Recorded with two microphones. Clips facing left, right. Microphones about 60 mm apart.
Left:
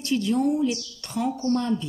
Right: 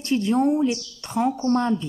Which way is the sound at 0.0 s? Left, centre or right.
Right.